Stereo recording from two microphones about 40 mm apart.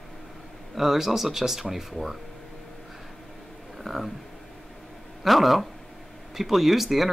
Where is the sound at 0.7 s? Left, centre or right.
Centre.